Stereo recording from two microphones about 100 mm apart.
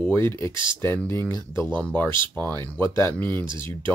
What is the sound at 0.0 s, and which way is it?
Speech, 20° left (ahead or behind).